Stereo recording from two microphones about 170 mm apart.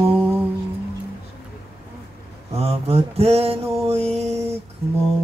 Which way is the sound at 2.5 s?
35° right (ahead or behind).